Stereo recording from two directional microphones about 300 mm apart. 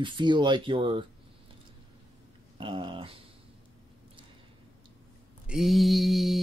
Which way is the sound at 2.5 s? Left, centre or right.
Centre.